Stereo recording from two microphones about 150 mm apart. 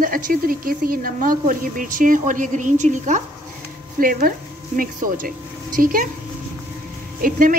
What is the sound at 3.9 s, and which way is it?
Speech, 70° right (ahead or behind).